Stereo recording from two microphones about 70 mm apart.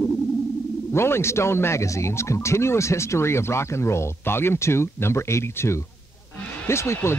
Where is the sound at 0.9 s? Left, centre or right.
Left.